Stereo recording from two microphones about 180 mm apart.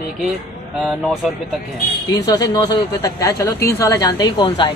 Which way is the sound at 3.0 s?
15° left (ahead or behind).